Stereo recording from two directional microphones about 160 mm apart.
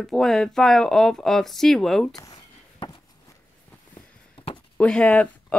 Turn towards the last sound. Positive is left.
turn(degrees=10)  # may be behind; listen again after turning